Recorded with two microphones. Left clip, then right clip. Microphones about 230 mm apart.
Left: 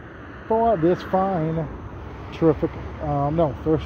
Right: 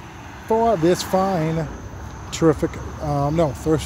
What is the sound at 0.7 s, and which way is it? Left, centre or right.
Speech, centre.